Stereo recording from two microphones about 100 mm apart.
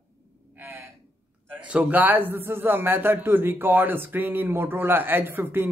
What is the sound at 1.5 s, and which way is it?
A man's voice, 10° right (ahead or behind).